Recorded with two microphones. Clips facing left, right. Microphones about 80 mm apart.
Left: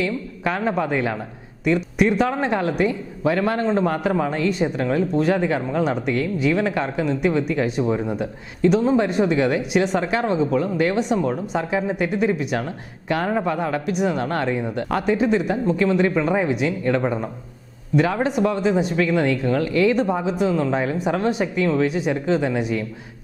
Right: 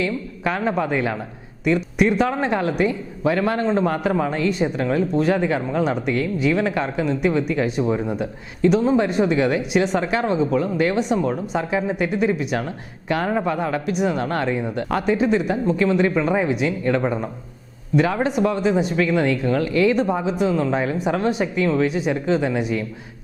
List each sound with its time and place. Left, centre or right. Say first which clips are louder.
0.0 s speech: even; centre